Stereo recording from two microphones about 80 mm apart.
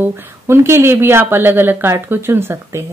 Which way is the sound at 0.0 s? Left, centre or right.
Right.